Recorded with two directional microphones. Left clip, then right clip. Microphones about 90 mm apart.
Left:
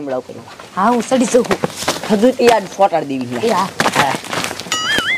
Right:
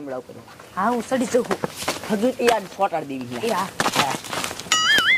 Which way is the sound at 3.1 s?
35° right (ahead or behind).